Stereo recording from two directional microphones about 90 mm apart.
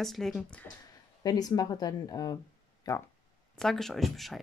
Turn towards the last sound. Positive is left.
turn(degrees=0)  # may be behind; listen again after turning